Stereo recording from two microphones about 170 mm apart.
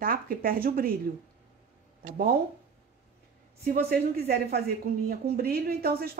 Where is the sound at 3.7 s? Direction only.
60° right (ahead or behind).